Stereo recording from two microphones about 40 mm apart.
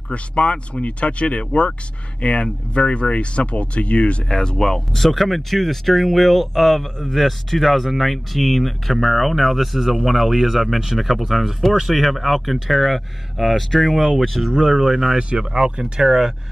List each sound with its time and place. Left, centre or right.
0.1 s speech: left; by 14.5 s centre
14.5 s speech: centre
15.1 s speech: right